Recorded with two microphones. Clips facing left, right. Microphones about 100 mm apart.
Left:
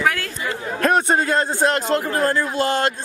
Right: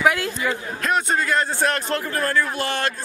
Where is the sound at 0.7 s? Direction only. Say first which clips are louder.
Left 6 dB; 45° left (ahead or behind).